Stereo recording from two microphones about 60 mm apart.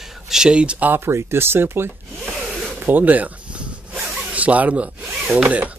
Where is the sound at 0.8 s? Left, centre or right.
Right.